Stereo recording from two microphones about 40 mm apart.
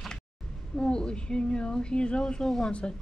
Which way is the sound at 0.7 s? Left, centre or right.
Left.